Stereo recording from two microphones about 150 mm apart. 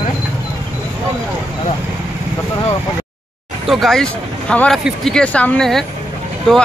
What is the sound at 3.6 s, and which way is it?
Speech, centre (ahead or behind).